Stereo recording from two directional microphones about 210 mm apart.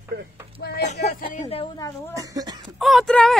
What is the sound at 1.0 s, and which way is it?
Speech, 30° left (ahead or behind).